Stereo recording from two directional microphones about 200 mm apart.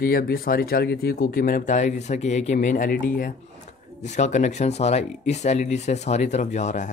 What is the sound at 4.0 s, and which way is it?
Speech, 35° left (ahead or behind).